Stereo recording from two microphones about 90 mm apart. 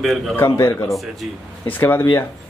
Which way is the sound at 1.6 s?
25° left (ahead or behind).